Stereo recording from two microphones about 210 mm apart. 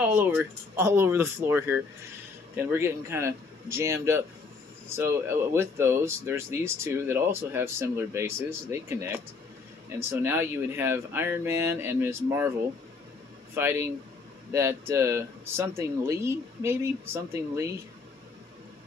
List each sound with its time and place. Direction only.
0.0 s speech: 10° right (ahead or behind)
13.6 s speech: 10° right (ahead or behind)